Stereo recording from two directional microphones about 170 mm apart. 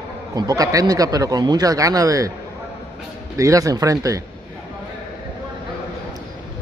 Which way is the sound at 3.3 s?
20° right (ahead or behind).